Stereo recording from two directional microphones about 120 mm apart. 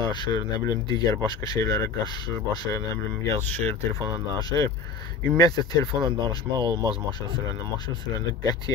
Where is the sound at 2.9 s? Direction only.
15° left (ahead or behind).